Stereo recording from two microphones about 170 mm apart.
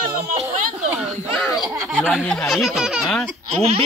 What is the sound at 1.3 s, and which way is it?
A man's voice, centre (ahead or behind).